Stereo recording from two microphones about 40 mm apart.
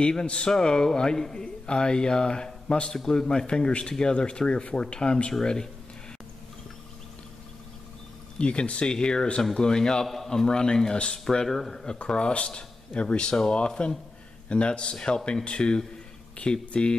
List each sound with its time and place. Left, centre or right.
0.0 s speech: centre
8.4 s speech: left
10.0 s a man's voice: centre
10.3 s speech: centre
11.2 s speech: centre
12.1 s speech: left